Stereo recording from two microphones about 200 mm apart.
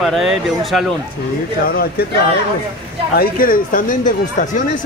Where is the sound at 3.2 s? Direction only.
45° left (ahead or behind).